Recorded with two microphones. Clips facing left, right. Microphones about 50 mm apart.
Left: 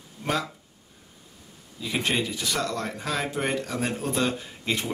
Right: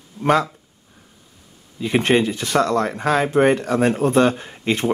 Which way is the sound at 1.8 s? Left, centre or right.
Right.